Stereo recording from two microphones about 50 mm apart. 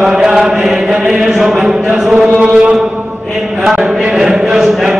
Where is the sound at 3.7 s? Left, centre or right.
Centre.